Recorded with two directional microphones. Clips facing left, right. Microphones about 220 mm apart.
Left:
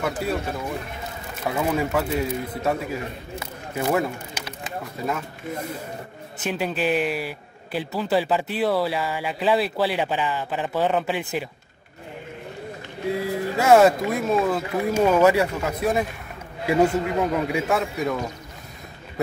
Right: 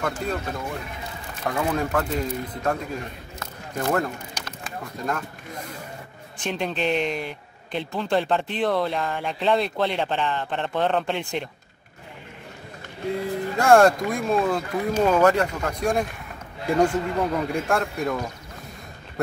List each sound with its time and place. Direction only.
0.2 s speech: 5° left (ahead or behind)
1.4 s a man's voice: 5° left (ahead or behind)
13.2 s speech: 5° left (ahead or behind)